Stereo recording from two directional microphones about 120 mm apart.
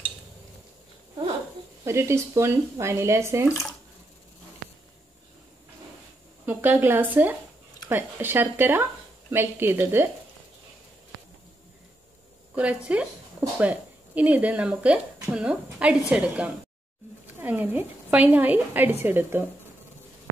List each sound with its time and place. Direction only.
1.9 s speech: 20° right (ahead or behind)
6.4 s a woman's voice: 15° right (ahead or behind)
12.5 s a woman's voice: 10° right (ahead or behind)